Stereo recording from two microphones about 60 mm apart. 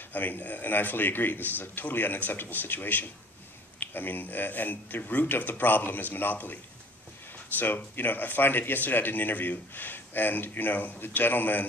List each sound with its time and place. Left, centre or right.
0.1 s speech: left